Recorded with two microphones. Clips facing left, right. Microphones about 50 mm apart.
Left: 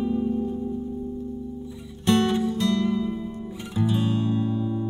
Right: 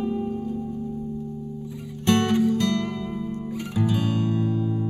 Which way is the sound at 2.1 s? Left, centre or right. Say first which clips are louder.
Right 2 dB; right.